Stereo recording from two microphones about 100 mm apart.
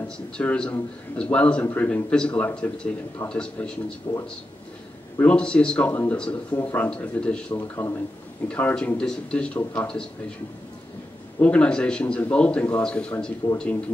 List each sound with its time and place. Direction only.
0.4 s a man's voice: 15° left (ahead or behind)
4.1 s speech: 35° left (ahead or behind)
5.2 s a man's voice: 10° left (ahead or behind)
5.9 s a man's voice: 20° left (ahead or behind)
7.5 s a man's voice: 25° left (ahead or behind)
11.4 s a man's voice: 10° left (ahead or behind)